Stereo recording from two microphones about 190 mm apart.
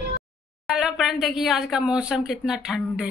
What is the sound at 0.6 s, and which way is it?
Speech, centre (ahead or behind).